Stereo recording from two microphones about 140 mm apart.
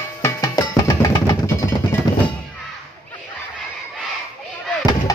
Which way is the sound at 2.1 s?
30° left (ahead or behind).